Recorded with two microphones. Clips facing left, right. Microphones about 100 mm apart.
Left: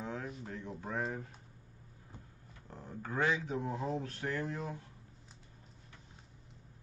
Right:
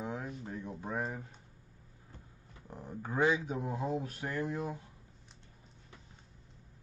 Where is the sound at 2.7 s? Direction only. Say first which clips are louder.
Right 2 dB; 15° right (ahead or behind).